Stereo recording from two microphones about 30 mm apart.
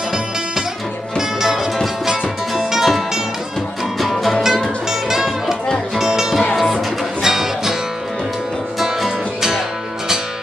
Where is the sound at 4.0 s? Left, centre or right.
Centre.